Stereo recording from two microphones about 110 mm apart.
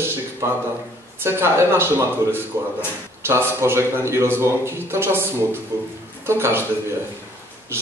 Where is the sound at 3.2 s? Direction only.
25° right (ahead or behind).